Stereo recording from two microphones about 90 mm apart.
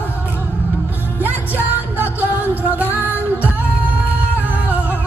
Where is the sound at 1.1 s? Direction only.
20° right (ahead or behind).